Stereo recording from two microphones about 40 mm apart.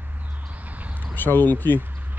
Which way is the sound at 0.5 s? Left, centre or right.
Right.